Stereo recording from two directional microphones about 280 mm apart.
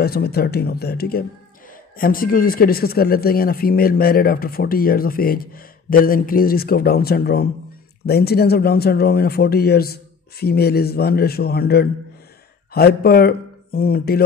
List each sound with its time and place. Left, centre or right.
0.0 s a man's voice: left